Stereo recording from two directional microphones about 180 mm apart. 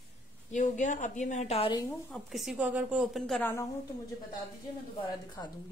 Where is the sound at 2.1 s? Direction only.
Centre (ahead or behind).